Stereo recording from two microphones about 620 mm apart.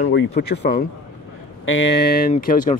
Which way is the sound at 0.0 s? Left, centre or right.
Centre.